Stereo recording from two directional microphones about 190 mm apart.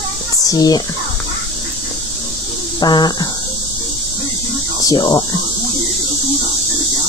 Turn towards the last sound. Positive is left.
turn(degrees=20)  # may be behind; listen again after turning